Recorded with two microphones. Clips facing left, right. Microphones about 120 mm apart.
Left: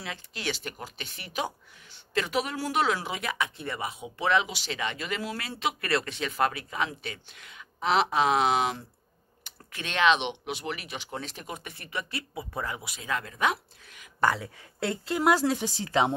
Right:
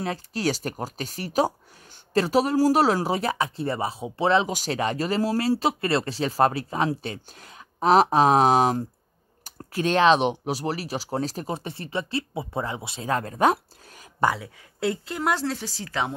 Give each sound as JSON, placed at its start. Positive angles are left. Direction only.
{"t": 0.0, "sound": "speech", "side_deg": -40}
{"t": 4.5, "sound": "speech", "side_deg": -45}
{"t": 14.2, "sound": "speech", "side_deg": -5}